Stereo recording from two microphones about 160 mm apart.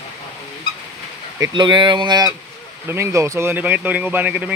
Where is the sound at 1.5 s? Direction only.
30° right (ahead or behind).